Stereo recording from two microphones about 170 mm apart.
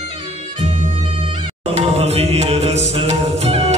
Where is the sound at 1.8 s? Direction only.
40° right (ahead or behind).